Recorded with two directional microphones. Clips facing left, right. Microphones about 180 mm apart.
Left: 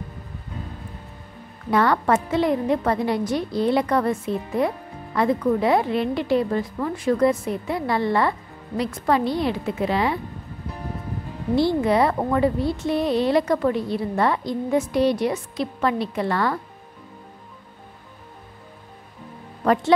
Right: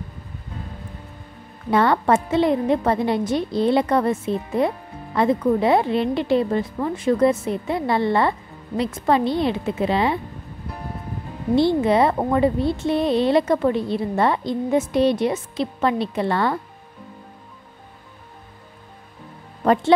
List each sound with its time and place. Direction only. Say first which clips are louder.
1.7 s a woman's voice: right 2 dB; 25° right (ahead or behind)
11.5 s a woman's voice: right 2 dB; 25° right (ahead or behind)
19.6 s speech: right 2 dB; 25° right (ahead or behind)